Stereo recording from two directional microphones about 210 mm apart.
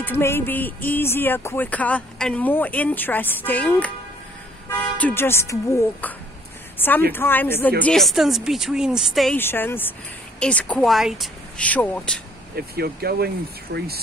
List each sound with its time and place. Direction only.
0.0 s speech: 10° left (ahead or behind)
9.4 s speech: 10° left (ahead or behind)
12.5 s speech: 50° right (ahead or behind)